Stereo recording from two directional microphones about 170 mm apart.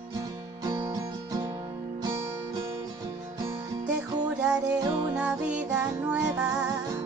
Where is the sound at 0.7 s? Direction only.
25° right (ahead or behind).